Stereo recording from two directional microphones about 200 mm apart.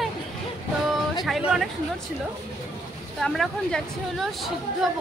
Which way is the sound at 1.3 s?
Centre (ahead or behind).